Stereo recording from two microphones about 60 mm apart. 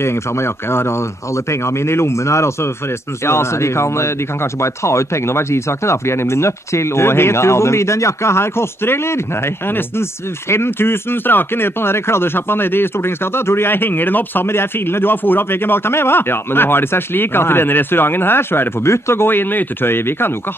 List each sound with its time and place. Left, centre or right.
0.0 s speech: left